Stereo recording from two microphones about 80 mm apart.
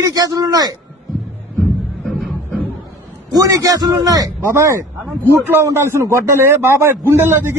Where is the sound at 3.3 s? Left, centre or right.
Right.